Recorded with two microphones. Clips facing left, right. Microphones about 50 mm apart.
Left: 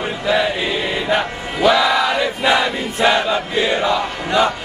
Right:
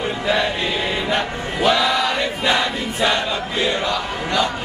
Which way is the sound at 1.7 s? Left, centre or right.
Centre.